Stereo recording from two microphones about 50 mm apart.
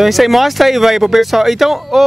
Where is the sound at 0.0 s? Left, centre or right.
Centre.